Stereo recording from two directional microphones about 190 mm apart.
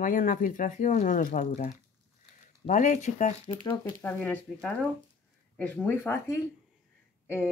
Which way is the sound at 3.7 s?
10° left (ahead or behind).